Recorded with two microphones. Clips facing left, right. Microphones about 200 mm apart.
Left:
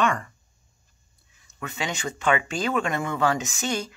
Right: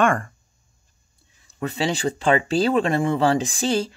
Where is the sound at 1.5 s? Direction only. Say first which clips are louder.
Right 7 dB; 35° right (ahead or behind).